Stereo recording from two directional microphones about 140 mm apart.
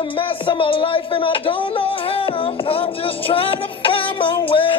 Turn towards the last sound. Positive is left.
turn(degrees=40)  # may be behind; listen again after turning